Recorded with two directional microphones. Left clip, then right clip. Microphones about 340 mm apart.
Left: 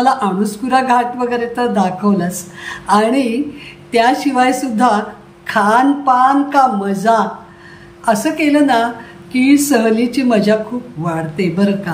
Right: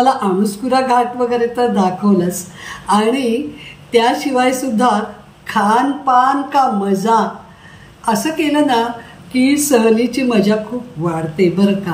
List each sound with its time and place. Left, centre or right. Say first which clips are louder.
0.0 s speech: even; centre